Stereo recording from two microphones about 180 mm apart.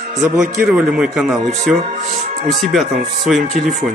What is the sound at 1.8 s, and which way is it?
Speech, 40° right (ahead or behind).